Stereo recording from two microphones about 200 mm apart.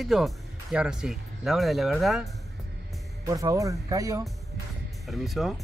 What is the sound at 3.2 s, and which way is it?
Speech, 15° right (ahead or behind).